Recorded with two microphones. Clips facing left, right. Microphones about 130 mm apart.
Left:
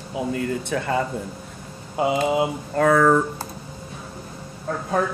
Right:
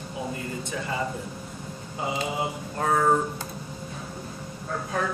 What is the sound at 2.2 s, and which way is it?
Speech, 75° left (ahead or behind).